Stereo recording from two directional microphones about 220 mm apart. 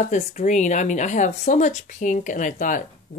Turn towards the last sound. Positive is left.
turn(degrees=35)  # may be behind; listen again after turning